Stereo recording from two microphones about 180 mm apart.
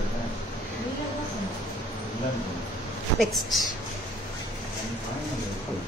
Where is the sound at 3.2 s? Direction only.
Centre (ahead or behind).